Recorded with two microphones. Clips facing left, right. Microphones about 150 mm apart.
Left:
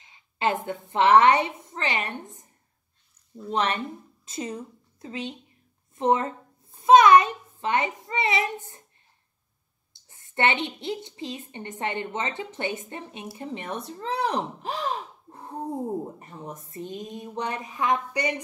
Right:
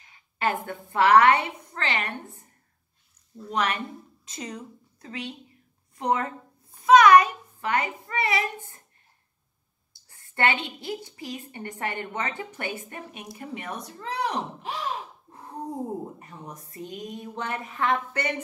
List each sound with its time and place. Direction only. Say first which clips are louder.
0.0 s a woman's voice: left 1 dB; 20° left (ahead or behind)
3.5 s a woman's voice: left 1 dB; 30° left (ahead or behind)
9.9 s a woman's voice: left 1 dB; 20° left (ahead or behind)
16.2 s a woman's voice: left 3 dB; 25° left (ahead or behind)